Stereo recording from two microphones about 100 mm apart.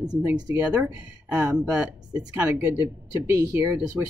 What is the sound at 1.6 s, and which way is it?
Speech, 10° right (ahead or behind).